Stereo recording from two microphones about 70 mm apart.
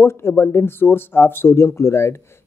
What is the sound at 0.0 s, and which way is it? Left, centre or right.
Speech, left.